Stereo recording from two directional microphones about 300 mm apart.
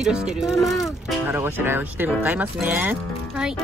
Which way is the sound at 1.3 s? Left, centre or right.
Centre.